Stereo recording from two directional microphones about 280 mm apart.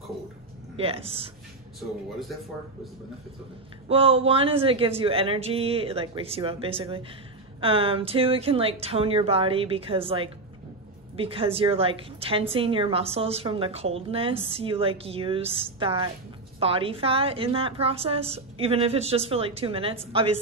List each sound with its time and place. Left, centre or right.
0.7 s a woman's voice: right
1.8 s speech: centre
3.9 s a woman's voice: centre